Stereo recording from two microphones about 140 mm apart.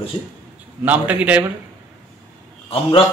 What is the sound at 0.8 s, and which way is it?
Speech, 10° right (ahead or behind).